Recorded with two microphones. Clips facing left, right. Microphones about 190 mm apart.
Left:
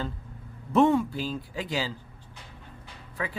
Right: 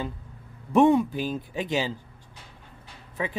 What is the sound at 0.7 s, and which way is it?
Speech, 15° right (ahead or behind).